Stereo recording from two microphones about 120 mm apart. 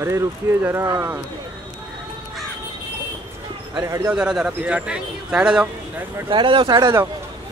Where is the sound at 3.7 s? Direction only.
25° right (ahead or behind).